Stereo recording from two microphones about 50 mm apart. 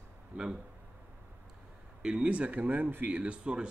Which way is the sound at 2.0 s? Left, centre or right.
Right.